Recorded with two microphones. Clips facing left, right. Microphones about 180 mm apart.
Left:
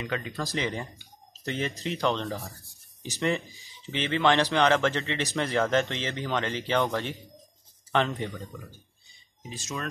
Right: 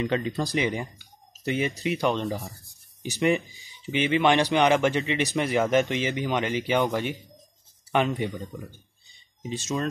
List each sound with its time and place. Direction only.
0.0 s speech: 30° right (ahead or behind)
0.6 s speech: 10° right (ahead or behind)